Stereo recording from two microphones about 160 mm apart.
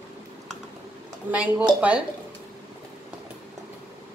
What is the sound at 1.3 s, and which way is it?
Speech, 10° right (ahead or behind).